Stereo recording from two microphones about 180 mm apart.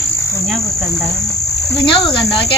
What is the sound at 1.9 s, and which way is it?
Cricket, 30° left (ahead or behind).